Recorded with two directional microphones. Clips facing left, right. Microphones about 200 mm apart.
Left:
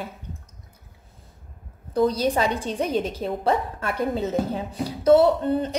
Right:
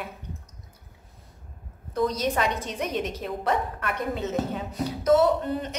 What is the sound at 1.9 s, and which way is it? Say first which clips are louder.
A woman's voice: left 4 dB; 30° left (ahead or behind).